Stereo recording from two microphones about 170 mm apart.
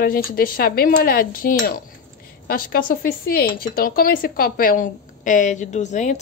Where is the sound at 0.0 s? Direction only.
60° left (ahead or behind).